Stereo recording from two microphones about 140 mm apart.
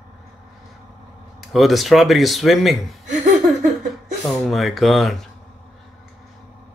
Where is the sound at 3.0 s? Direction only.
60° right (ahead or behind).